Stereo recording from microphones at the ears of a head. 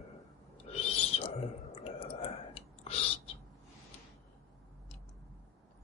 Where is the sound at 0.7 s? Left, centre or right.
Left.